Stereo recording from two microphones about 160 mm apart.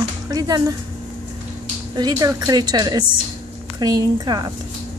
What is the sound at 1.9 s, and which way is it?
Speech, 25° right (ahead or behind).